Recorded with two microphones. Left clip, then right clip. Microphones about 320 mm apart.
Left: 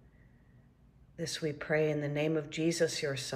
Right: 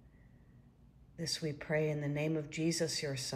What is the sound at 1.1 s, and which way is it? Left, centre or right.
Speech, centre.